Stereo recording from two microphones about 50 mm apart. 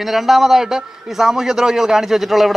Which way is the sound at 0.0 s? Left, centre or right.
Centre.